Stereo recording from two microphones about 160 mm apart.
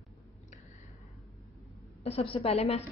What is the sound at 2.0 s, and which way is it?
Speech, 35° left (ahead or behind).